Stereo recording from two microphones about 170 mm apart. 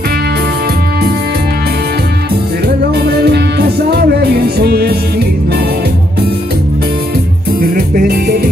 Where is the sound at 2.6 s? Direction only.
70° right (ahead or behind).